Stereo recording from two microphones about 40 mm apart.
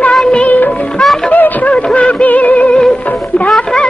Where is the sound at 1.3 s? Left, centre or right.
Left.